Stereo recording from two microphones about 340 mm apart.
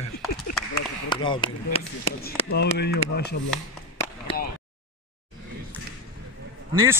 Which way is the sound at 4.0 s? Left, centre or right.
Centre.